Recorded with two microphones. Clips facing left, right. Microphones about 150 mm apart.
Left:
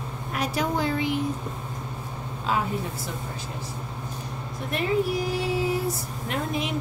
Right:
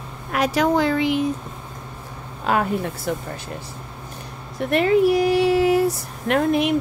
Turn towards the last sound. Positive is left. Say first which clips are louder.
# right 10 dB
turn(degrees=-65)  # may be behind; listen again after turning